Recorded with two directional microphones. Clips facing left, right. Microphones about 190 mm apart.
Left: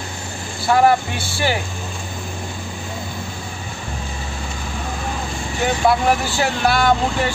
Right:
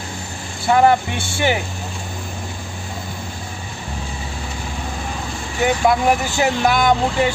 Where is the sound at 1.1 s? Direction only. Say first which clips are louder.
Right 2 dB; 20° right (ahead or behind).